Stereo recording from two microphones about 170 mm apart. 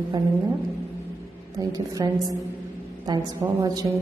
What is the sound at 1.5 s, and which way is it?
A woman's voice, 20° right (ahead or behind).